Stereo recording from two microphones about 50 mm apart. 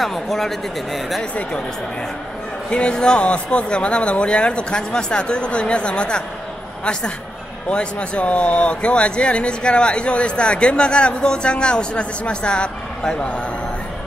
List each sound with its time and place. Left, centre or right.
0.0 s speech: centre
2.7 s a woman's voice: centre